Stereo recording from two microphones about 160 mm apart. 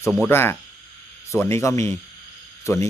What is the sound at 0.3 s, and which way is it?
Speech, 15° left (ahead or behind).